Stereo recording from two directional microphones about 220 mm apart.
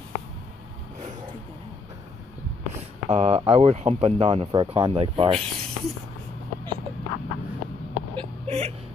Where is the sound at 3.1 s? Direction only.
25° right (ahead or behind).